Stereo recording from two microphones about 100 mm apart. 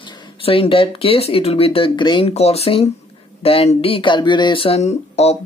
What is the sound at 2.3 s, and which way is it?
Speech, 90° left.